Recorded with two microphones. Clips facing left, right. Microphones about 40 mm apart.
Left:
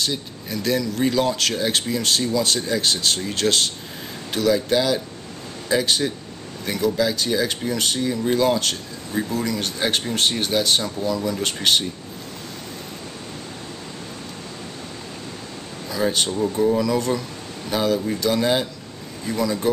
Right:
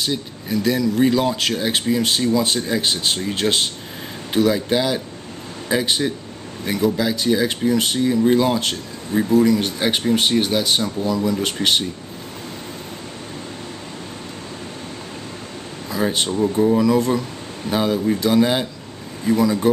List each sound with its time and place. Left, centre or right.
0.0 s speech: centre
16.0 s speech: centre